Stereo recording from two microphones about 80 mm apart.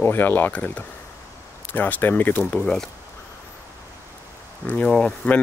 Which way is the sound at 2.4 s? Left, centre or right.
Centre.